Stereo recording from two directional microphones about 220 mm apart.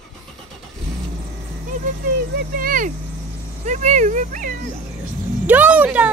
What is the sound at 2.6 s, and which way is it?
Speech, 40° right (ahead or behind).